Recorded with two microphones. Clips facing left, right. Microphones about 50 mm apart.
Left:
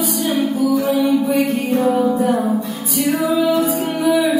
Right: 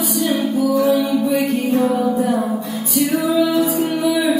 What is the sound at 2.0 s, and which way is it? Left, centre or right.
Music, centre.